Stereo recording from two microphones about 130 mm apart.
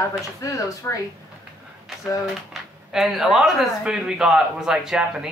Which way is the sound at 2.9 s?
Centre (ahead or behind).